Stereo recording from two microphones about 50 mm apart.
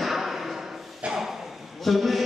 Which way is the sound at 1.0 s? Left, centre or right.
Centre.